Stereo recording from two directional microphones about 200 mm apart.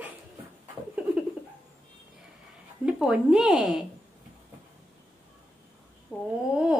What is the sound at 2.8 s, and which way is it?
Speech, 5° right (ahead or behind).